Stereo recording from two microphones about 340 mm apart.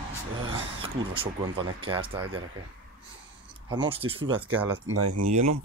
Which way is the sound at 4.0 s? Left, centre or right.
Centre.